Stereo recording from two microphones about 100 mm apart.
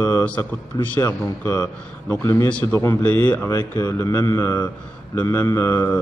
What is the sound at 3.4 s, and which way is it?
A man's voice, 30° left (ahead or behind).